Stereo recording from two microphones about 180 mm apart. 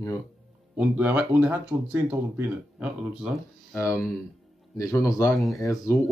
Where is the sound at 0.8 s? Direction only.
10° right (ahead or behind).